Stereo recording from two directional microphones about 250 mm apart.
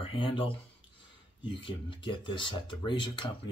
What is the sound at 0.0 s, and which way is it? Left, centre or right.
Speech, left.